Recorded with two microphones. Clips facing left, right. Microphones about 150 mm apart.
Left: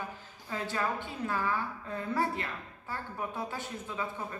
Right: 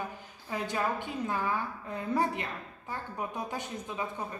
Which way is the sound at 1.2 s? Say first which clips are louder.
Left 1 dB; 15° right (ahead or behind).